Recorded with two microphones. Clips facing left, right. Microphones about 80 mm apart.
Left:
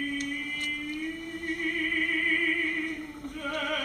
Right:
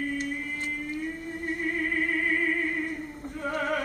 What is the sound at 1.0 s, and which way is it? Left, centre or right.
Music, right.